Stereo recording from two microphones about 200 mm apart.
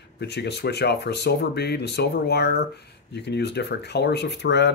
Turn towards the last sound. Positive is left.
turn(degrees=60)  # may be behind; listen again after turning